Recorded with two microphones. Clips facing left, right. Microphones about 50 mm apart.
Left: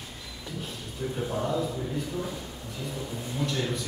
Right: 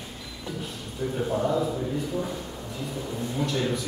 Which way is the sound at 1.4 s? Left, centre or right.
Centre.